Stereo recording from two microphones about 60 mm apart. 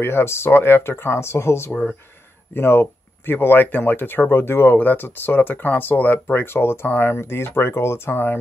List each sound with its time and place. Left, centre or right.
0.0 s speech: left
6.4 s speech: left